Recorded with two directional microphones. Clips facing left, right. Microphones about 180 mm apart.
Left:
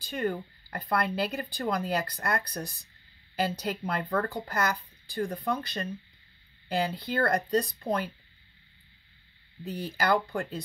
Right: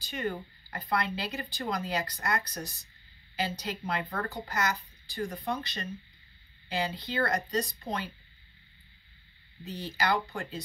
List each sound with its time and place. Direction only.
0.0 s speech: 55° left (ahead or behind)
9.7 s speech: 55° left (ahead or behind)